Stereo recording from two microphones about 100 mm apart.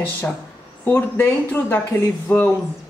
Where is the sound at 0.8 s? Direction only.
20° left (ahead or behind).